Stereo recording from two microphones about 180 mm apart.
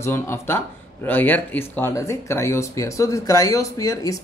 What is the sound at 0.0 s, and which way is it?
Speech, 15° left (ahead or behind).